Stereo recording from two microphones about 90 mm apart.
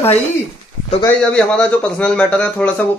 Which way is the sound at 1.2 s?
15° left (ahead or behind).